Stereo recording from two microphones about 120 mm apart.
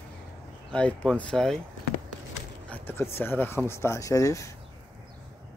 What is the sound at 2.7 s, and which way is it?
Speech, 20° left (ahead or behind).